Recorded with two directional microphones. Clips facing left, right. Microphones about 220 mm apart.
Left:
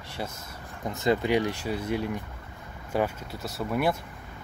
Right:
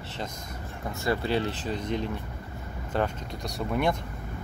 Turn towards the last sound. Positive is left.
turn(degrees=5)  # may be behind; listen again after turning